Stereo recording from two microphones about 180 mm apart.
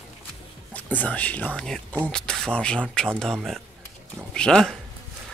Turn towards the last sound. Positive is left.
turn(degrees=5)  # may be behind; listen again after turning